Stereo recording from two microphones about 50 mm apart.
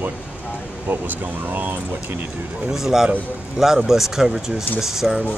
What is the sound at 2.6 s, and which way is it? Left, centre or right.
Speech, centre.